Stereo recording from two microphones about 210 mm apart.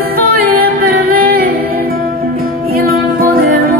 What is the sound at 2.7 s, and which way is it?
Music, 45° right (ahead or behind).